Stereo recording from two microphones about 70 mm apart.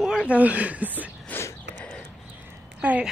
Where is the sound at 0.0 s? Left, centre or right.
Centre.